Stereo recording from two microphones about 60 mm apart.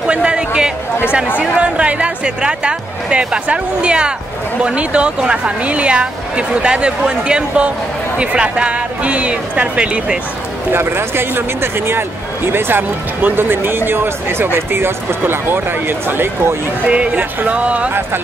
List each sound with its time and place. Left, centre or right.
0.0 s a sound: centre
1.4 s speech: centre
10.7 s speech: right
16.8 s speech: right